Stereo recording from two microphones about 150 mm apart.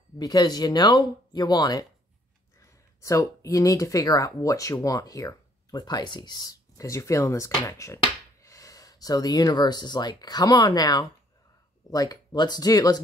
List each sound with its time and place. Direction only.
0.2 s speech: 25° left (ahead or behind)